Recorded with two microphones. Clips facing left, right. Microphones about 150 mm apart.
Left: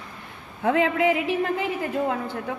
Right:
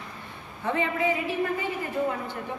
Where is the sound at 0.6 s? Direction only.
90° left.